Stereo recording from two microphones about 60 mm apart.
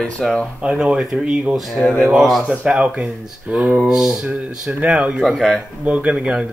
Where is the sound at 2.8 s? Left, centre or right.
Right.